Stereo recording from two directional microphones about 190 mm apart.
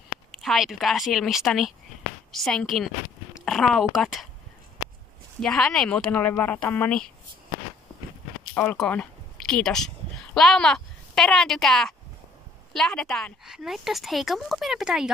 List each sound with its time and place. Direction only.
0.4 s speech: centre (ahead or behind)
5.4 s speech: 5° left (ahead or behind)
8.5 s speech: 5° left (ahead or behind)